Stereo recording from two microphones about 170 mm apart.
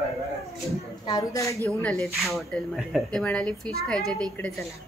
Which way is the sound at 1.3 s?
20° left (ahead or behind).